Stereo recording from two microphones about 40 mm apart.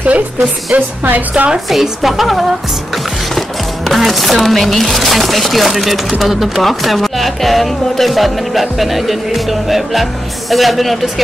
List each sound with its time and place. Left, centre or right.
0.0 s music: right
0.7 s music: right
1.7 s speech: centre